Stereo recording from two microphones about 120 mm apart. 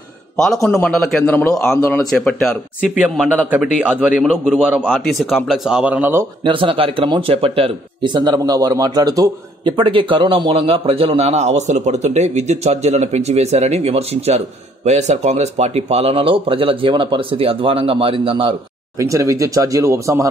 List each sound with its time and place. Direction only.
0.4 s speech: 5° left (ahead or behind)
1.2 s a man's voice: 20° left (ahead or behind)
2.0 s speech: centre (ahead or behind)
3.0 s a man's voice: 10° right (ahead or behind)
6.4 s speech: 45° right (ahead or behind); by 9.8 s 30° right (ahead or behind)
9.8 s a man's voice: 45° right (ahead or behind)
18.9 s speech: 25° right (ahead or behind)